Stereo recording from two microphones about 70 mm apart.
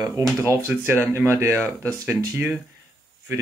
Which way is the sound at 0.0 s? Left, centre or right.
Right.